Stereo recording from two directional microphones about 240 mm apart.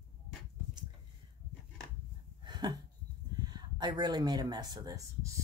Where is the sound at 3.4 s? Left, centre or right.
Centre.